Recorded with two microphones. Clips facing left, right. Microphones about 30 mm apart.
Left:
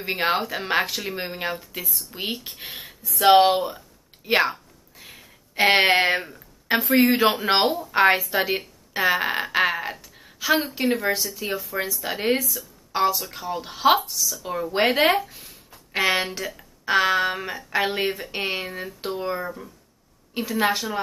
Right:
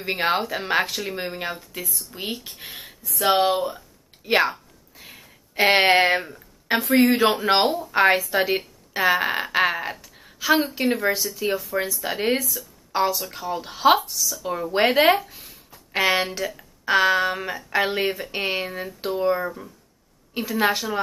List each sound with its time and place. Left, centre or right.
0.0 s speech: centre
3.2 s speech: left
3.6 s a sound: centre
7.0 s speech: centre